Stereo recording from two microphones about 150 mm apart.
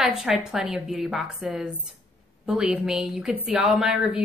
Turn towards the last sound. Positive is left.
turn(degrees=0)  # may be behind; listen again after turning